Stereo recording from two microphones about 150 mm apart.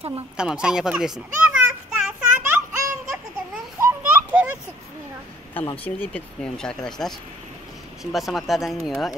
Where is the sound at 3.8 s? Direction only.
15° right (ahead or behind).